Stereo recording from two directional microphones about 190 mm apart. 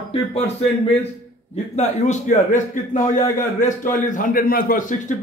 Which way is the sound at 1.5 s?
35° left (ahead or behind).